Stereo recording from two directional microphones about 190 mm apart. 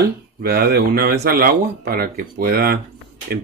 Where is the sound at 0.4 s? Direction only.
55° right (ahead or behind).